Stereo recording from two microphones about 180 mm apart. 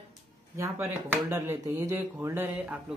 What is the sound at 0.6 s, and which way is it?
Speech, 15° right (ahead or behind).